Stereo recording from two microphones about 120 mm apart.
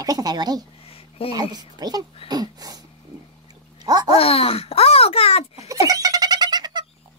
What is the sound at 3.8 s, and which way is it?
Speech, 35° right (ahead or behind).